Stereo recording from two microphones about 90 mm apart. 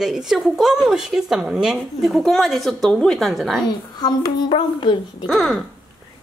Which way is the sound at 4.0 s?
50° left (ahead or behind).